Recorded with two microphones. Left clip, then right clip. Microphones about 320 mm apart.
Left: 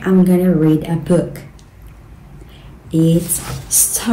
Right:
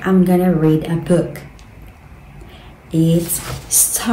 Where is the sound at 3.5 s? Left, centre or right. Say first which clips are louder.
Even; centre.